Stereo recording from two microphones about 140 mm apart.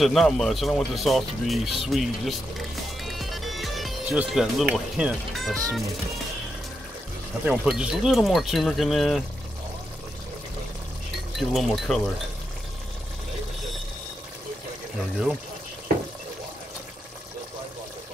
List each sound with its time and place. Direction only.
0.0 s speech: centre (ahead or behind)
7.4 s speech: 5° right (ahead or behind)
11.3 s speech: centre (ahead or behind)